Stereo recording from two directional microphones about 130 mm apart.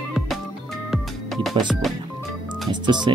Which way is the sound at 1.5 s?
Centre (ahead or behind).